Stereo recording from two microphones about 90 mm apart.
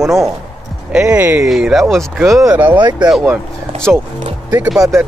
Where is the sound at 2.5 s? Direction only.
15° right (ahead or behind).